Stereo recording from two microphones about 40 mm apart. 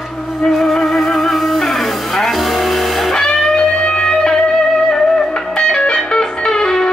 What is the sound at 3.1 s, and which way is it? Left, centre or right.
Music, centre.